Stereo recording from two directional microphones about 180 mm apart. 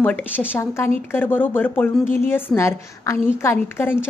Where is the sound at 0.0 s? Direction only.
10° left (ahead or behind).